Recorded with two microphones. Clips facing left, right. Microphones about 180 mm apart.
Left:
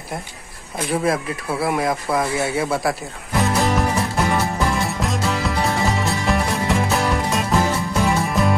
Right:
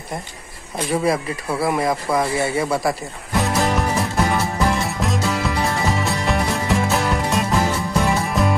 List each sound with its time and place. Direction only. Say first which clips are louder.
0.7 s speech: right 1 dB; centre (ahead or behind)
4.4 s music: even; centre (ahead or behind)